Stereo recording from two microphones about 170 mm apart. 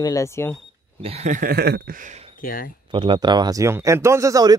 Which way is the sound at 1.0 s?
40° right (ahead or behind).